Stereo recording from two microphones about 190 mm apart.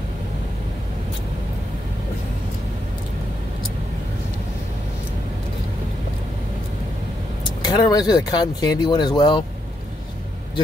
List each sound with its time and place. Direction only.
7.6 s speech: 20° left (ahead or behind)